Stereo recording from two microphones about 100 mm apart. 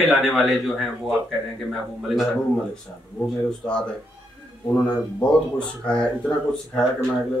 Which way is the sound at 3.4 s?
10° left (ahead or behind).